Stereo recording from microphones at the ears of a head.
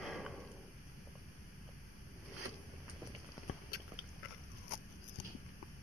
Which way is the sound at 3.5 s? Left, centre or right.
Left.